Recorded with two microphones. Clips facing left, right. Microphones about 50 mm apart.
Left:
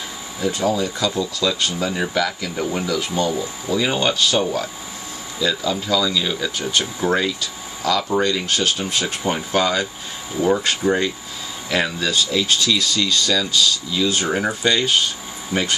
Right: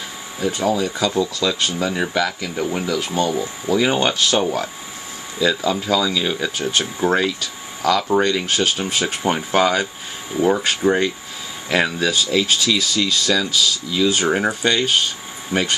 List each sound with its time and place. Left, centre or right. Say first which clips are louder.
0.4 s speech: right 1 dB; centre
15.5 s speech: right 1 dB; right